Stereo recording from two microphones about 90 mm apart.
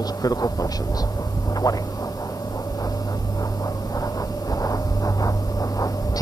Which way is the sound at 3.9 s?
40° left (ahead or behind).